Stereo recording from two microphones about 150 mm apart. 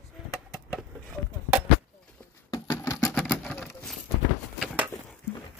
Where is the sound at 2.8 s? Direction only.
25° left (ahead or behind).